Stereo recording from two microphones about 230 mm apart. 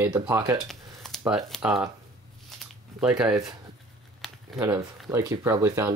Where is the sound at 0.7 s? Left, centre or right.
Centre.